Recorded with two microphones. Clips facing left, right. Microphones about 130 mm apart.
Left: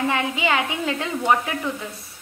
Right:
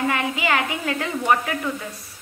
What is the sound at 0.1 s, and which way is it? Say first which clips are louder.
A woman's voice: even; 20° left (ahead or behind).